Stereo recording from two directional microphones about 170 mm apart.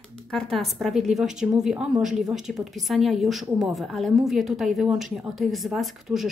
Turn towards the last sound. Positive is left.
turn(degrees=0)  # may be behind; listen again after turning